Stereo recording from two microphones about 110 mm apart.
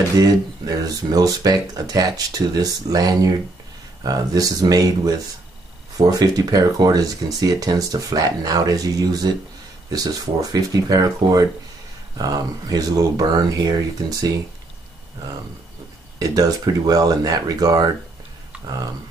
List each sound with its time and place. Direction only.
0.2 s speech: 35° right (ahead or behind)
16.2 s speech: 35° right (ahead or behind)